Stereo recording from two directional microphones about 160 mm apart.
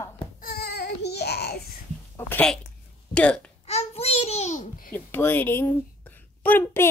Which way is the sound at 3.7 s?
40° left (ahead or behind).